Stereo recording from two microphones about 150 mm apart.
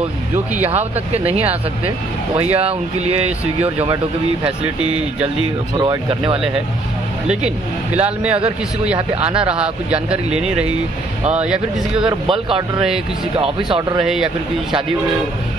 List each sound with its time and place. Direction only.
1.1 s speech: 40° right (ahead or behind)
5.8 s speech: 30° right (ahead or behind)
7.2 s speech: 10° right (ahead or behind)
9.4 s speech: 5° right (ahead or behind)
12.0 s speech: 35° right (ahead or behind)
14.0 s a man's voice: 5° right (ahead or behind)